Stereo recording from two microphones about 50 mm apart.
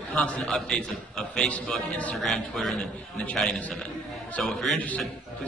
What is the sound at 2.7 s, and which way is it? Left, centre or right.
Speech, left.